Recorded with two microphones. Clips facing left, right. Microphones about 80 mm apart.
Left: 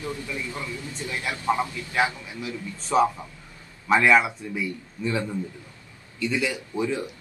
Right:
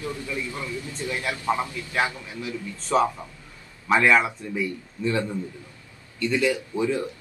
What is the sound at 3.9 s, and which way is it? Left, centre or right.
Speech, centre.